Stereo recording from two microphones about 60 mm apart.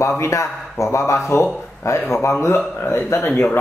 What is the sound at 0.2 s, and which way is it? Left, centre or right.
Speech, left.